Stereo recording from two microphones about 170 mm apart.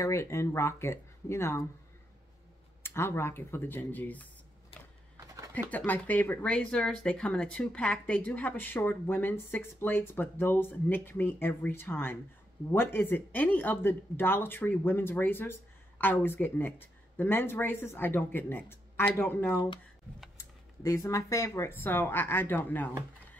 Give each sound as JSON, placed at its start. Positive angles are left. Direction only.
{"t": 0.0, "sound": "speech", "side_deg": 15}
{"t": 2.8, "sound": "speech", "side_deg": 15}
{"t": 5.1, "sound": "a sound", "side_deg": -20}
{"t": 5.5, "sound": "speech", "side_deg": 10}